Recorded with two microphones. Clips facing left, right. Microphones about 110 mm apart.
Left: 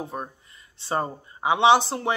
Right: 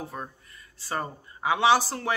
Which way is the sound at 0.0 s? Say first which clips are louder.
Left 4 dB; 20° left (ahead or behind).